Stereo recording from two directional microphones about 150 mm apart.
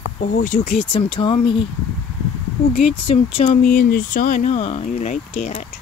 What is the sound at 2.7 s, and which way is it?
Speech, 40° left (ahead or behind).